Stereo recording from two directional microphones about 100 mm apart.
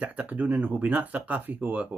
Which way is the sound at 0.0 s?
15° right (ahead or behind).